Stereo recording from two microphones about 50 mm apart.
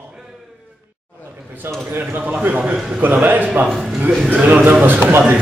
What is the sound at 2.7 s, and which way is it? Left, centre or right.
Speech, centre.